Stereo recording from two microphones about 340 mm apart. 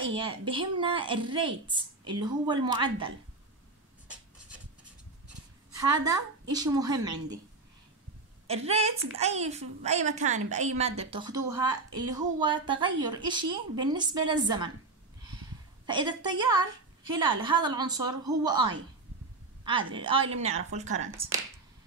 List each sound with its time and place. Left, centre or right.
0.1 s a woman's voice: centre
5.7 s a woman's voice: centre
8.5 s a woman's voice: centre
15.9 s a woman's voice: centre